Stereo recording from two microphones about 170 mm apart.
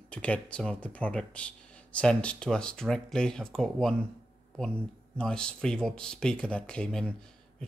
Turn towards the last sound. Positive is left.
turn(degrees=5)  # may be behind; listen again after turning